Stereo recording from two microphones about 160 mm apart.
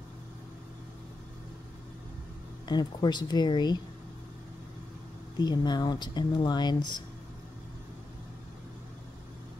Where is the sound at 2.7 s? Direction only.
25° left (ahead or behind).